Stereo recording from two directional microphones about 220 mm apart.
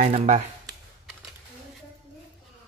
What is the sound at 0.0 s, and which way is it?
Speech, 30° right (ahead or behind).